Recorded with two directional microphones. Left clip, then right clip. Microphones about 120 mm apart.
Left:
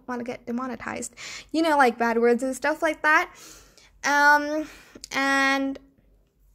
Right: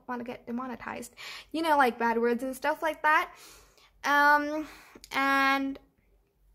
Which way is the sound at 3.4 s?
20° left (ahead or behind).